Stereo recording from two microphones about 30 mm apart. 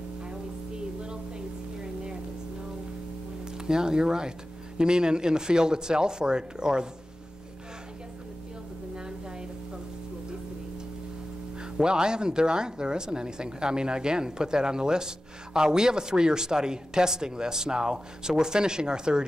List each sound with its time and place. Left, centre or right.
0.3 s a sound: right
3.5 s a woman's voice: right
11.8 s a woman's voice: right